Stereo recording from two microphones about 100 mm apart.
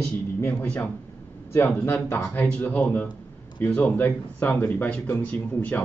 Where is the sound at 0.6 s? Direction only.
10° left (ahead or behind).